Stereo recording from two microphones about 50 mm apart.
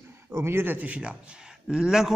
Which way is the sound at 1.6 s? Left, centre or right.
Centre.